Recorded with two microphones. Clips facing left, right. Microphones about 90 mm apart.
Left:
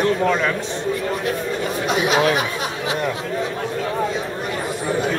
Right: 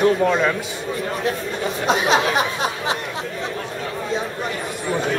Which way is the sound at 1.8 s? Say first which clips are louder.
Right 2 dB; 30° right (ahead or behind).